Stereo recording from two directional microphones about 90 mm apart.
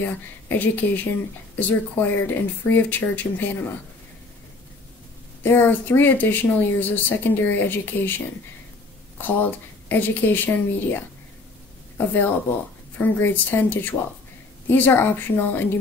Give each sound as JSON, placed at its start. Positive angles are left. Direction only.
{"t": 0.0, "sound": "speech", "side_deg": 20}
{"t": 5.4, "sound": "speech", "side_deg": 20}
{"t": 9.2, "sound": "speech", "side_deg": 20}
{"t": 12.9, "sound": "speech", "side_deg": 20}